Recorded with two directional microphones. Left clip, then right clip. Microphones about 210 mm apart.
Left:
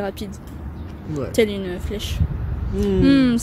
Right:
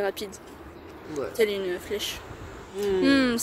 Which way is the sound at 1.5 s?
10° right (ahead or behind).